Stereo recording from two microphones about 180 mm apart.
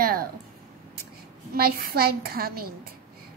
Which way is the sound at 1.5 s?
55° right (ahead or behind).